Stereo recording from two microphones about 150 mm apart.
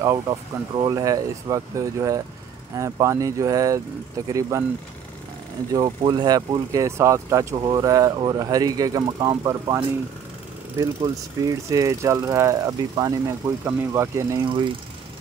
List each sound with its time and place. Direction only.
0.0 s speech: 25° right (ahead or behind)
5.7 s speech: 30° right (ahead or behind)